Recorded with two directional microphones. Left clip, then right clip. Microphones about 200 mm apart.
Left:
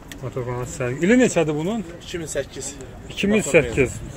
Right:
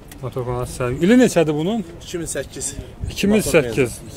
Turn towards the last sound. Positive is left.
turn(degrees=-15)  # may be behind; listen again after turning